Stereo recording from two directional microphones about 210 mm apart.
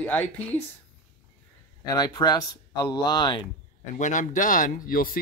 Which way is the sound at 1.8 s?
20° left (ahead or behind).